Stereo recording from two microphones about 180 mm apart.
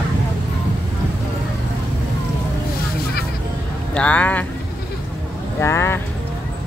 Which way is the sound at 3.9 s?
5° left (ahead or behind).